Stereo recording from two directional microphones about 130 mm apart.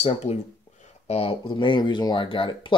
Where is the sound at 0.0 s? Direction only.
55° left (ahead or behind).